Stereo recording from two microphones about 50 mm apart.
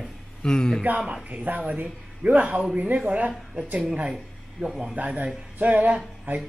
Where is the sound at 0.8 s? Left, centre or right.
Right.